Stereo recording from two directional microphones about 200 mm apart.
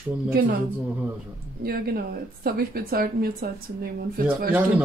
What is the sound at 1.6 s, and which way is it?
Speech, 50° right (ahead or behind).